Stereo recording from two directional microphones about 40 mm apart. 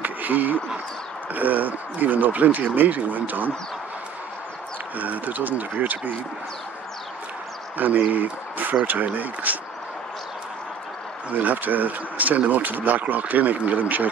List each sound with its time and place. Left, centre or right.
0.0 s a sound: right
1.3 s speech: right
4.9 s speech: right
7.7 s speech: right
11.3 s speech: right